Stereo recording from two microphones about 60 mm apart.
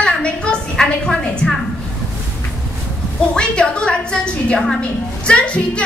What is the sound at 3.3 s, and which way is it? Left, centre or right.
A woman's voice, centre.